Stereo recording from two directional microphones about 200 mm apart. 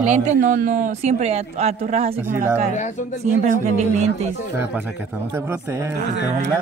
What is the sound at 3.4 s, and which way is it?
Speech, 35° right (ahead or behind).